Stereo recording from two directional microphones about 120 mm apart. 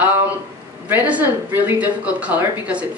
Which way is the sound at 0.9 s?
15° right (ahead or behind).